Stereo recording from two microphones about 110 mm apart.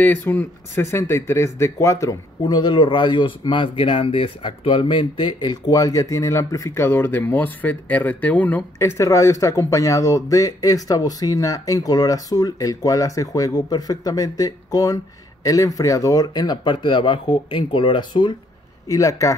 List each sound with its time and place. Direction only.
0.0 s a man's voice: 20° left (ahead or behind)
8.7 s a man's voice: 25° left (ahead or behind); by 18.3 s 45° left (ahead or behind)
18.9 s speech: 30° left (ahead or behind)